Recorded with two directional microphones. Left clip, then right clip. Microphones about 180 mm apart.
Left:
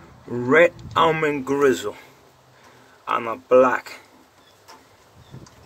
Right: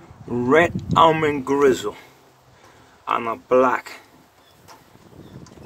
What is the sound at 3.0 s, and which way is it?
Speech, 30° right (ahead or behind).